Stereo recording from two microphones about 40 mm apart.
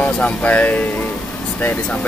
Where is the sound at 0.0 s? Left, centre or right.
Left.